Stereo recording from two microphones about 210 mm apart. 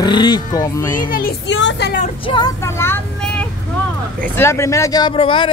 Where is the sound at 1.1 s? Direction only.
50° left (ahead or behind).